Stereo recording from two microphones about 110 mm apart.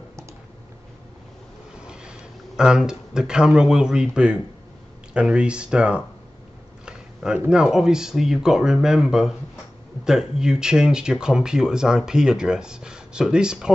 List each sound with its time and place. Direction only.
1.9 s speech: 5° right (ahead or behind)